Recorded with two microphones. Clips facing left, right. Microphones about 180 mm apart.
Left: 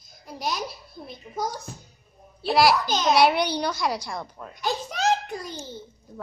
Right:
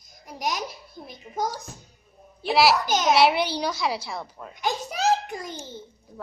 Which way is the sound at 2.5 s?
5° right (ahead or behind).